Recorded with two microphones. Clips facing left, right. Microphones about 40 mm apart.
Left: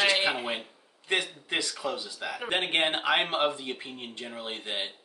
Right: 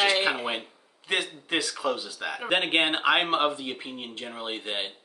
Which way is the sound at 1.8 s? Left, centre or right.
Right.